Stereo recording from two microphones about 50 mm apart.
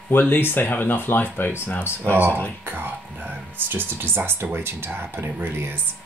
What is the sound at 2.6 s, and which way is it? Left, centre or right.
Speech, right.